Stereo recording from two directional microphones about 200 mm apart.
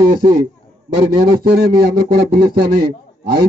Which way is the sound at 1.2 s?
20° right (ahead or behind).